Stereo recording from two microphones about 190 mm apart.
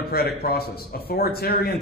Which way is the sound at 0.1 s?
55° left (ahead or behind).